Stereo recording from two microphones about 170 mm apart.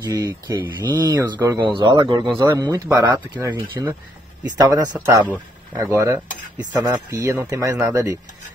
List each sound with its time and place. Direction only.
0.0 s a man's voice: 20° right (ahead or behind)